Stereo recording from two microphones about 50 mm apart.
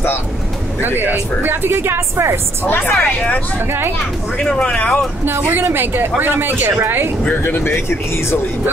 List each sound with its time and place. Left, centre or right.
0.7 s speech: right
2.6 s a woman's voice: left
2.9 s speech: left
4.6 s speech: left
5.6 s speech: right
7.4 s speech: left